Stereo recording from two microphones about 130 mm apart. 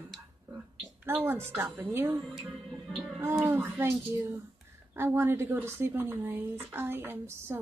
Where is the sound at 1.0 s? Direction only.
15° right (ahead or behind).